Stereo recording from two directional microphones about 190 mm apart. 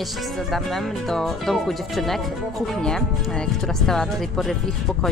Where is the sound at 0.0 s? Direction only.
Centre (ahead or behind).